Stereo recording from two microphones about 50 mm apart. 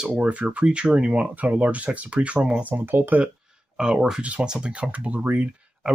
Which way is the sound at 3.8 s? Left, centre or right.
Centre.